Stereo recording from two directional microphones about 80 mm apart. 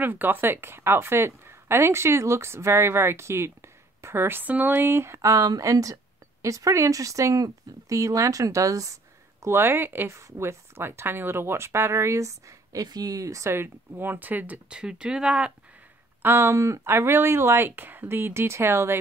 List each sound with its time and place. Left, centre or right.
0.0 s a woman's voice: right
10.1 s a woman's voice: right; by 15.5 s centre
16.2 s a woman's voice: right